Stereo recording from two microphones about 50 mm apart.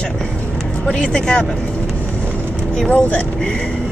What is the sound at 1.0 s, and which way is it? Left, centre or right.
Speech, centre.